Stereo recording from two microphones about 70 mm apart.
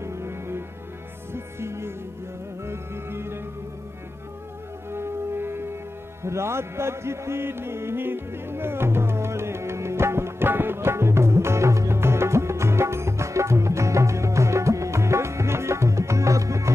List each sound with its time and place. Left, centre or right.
0.0 s music: right
4.9 s music: right